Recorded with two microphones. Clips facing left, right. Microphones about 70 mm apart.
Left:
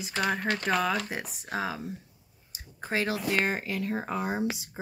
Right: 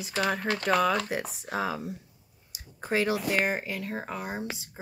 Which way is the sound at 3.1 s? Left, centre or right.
Centre.